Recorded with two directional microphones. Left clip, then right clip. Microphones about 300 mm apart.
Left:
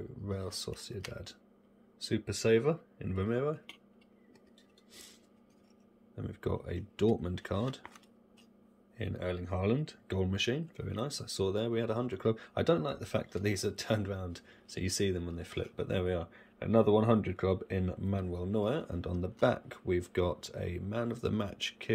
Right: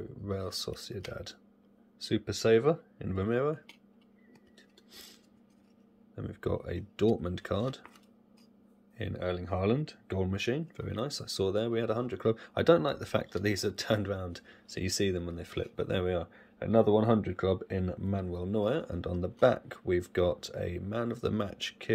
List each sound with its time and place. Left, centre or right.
0.0 s speech: centre
6.1 s speech: centre
8.9 s speech: centre